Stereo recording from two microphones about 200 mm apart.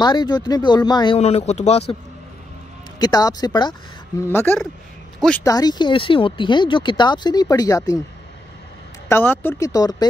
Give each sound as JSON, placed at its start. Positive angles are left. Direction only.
{"t": 0.0, "sound": "speech", "side_deg": 20}
{"t": 3.0, "sound": "speech", "side_deg": 20}
{"t": 9.1, "sound": "speech", "side_deg": 10}